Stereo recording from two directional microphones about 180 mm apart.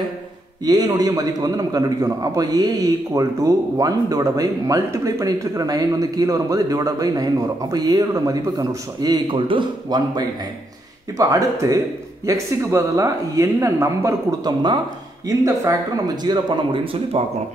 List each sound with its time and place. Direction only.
0.7 s a man's voice: 20° right (ahead or behind)